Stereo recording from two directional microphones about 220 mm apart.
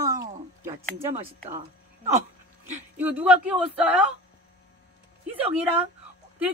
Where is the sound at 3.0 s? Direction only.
5° right (ahead or behind).